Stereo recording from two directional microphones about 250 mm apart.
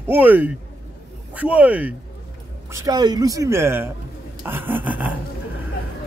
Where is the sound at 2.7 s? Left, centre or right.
Centre.